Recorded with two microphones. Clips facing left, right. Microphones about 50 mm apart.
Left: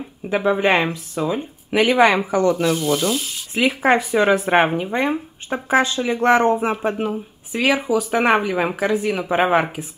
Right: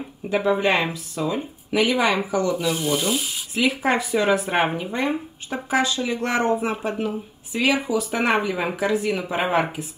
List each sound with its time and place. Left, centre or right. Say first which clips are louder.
0.3 s speech: left 3 dB; left
2.7 s sink: left 3 dB; centre
3.5 s speech: left 4 dB; left